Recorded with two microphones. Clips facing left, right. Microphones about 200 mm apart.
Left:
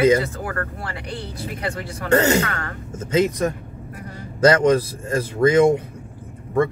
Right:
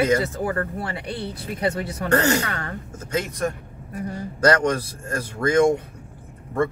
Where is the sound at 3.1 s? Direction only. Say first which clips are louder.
Left 6 dB; 20° left (ahead or behind).